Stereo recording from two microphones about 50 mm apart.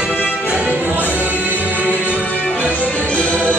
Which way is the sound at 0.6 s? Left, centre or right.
Right.